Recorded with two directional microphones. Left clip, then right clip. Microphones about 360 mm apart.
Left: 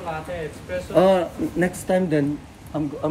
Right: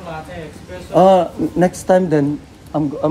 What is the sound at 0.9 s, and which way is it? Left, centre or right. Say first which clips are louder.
Speech: right 7 dB; centre.